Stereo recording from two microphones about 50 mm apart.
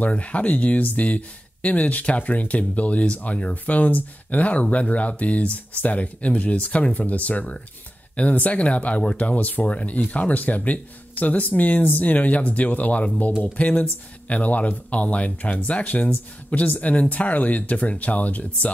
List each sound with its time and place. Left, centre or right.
0.0 s speech: left